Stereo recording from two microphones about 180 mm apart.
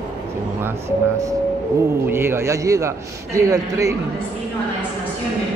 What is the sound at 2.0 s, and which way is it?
A man's voice, 15° right (ahead or behind).